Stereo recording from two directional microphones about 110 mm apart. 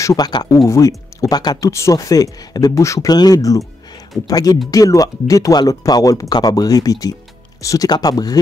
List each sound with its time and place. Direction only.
0.0 s speech: 35° left (ahead or behind)